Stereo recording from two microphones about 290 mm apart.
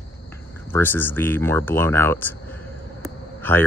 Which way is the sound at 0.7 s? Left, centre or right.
Centre.